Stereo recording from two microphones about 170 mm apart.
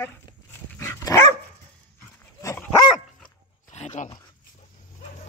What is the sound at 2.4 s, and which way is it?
Dog, 15° left (ahead or behind).